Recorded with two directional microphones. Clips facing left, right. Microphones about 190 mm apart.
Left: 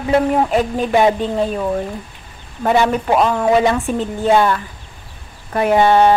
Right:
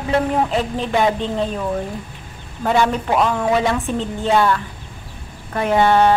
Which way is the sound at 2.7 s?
15° left (ahead or behind).